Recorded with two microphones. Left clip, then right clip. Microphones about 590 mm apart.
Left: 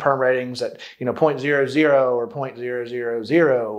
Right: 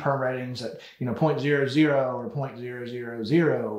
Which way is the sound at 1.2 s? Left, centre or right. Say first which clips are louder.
Left 5 dB; left.